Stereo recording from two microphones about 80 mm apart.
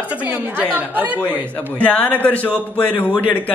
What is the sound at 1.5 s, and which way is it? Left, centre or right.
A man's voice, centre.